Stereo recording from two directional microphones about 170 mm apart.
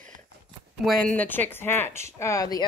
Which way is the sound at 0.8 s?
10° left (ahead or behind).